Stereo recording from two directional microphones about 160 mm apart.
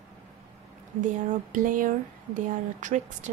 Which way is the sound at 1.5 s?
55° right (ahead or behind).